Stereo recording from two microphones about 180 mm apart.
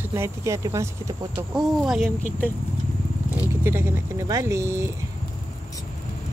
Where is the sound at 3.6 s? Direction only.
15° right (ahead or behind).